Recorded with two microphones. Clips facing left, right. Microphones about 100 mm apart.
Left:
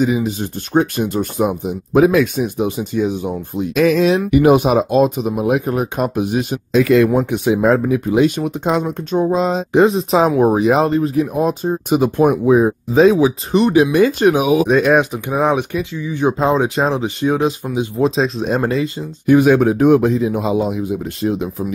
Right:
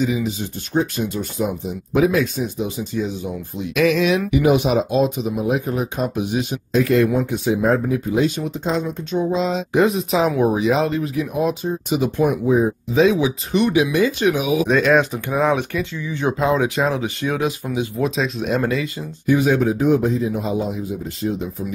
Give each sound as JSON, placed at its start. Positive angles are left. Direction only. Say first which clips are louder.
{"t": 0.0, "sound": "speech", "louder": "left 4 dB", "side_deg": 50}
{"t": 3.7, "sound": "speech", "louder": "left 3 dB", "side_deg": 35}
{"t": 4.3, "sound": "speech", "louder": "left 5 dB", "side_deg": 50}
{"t": 6.7, "sound": "speech", "louder": "left 4 dB", "side_deg": 90}
{"t": 7.2, "sound": "speech", "louder": "left 4 dB", "side_deg": 70}
{"t": 9.7, "sound": "speech", "louder": "left 5 dB", "side_deg": 30}
{"t": 10.9, "sound": "speech", "louder": "left 6 dB", "side_deg": 35}
{"t": 12.9, "sound": "speech", "louder": "left 5 dB", "side_deg": 40}
{"t": 13.9, "sound": "speech", "louder": "left 5 dB", "side_deg": 50}
{"t": 14.7, "sound": "speech", "louder": "left 3 dB", "side_deg": 15}
{"t": 16.3, "sound": "speech", "louder": "left 2 dB", "side_deg": 30}
{"t": 16.8, "sound": "speech", "louder": "left 4 dB", "side_deg": 20}
{"t": 19.2, "sound": "speech", "louder": "left 6 dB", "side_deg": 55}